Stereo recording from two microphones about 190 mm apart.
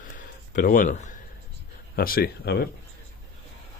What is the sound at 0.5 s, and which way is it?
Speech, 45° left (ahead or behind).